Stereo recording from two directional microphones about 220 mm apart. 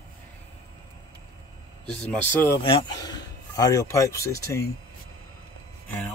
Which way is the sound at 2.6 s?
20° left (ahead or behind).